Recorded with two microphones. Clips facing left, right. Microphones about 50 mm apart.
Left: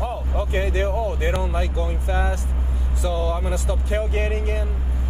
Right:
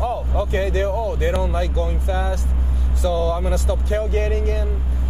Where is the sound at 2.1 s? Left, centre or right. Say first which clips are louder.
Left 1 dB; left.